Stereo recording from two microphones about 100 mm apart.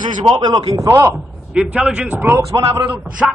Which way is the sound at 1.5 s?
10° right (ahead or behind).